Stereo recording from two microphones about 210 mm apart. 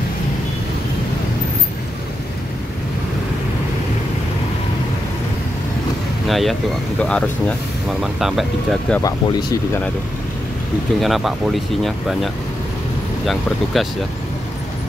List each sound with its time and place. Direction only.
6.2 s speech: centre (ahead or behind)
9.0 s speech: 15° left (ahead or behind)
11.0 s speech: centre (ahead or behind)
13.7 s speech: centre (ahead or behind)